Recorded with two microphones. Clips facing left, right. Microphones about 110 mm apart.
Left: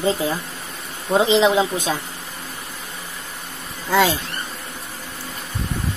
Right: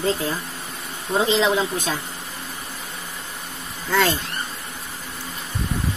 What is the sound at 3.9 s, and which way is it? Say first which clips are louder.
Speech: left 3 dB; 10° left (ahead or behind).